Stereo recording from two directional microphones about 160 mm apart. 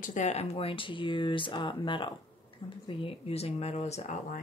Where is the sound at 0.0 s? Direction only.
50° left (ahead or behind).